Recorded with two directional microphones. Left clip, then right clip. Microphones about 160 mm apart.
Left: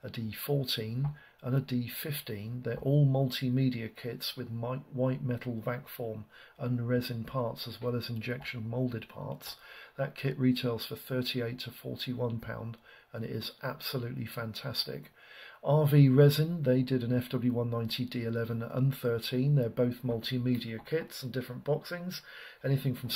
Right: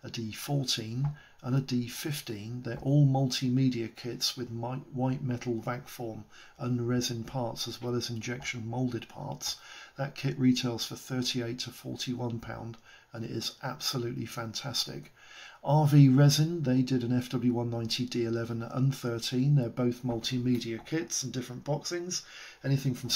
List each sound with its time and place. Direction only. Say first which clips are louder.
0.0 s speech: right 1 dB; 20° left (ahead or behind)